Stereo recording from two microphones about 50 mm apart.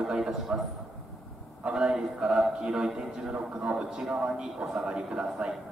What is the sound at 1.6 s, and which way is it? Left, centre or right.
A man's voice, centre.